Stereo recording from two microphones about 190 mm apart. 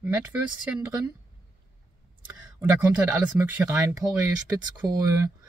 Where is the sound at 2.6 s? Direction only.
10° right (ahead or behind).